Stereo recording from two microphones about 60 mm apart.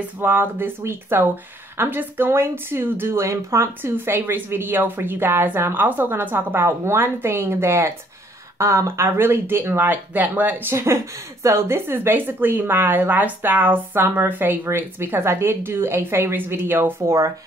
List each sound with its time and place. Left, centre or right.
0.2 s speech: right
3.3 s speech: right